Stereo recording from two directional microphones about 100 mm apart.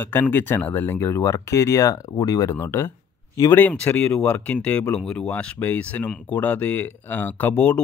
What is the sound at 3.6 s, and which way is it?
Speech, 15° left (ahead or behind).